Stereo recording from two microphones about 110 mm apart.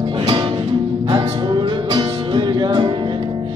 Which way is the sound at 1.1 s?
45° right (ahead or behind).